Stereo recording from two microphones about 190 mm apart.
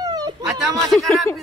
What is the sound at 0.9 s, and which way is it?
Speech, centre (ahead or behind).